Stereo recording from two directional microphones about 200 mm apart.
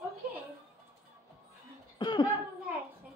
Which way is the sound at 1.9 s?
20° left (ahead or behind).